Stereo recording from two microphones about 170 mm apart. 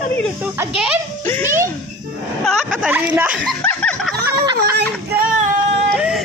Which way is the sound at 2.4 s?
Centre (ahead or behind).